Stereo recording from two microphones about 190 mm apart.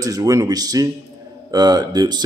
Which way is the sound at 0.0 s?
20° right (ahead or behind).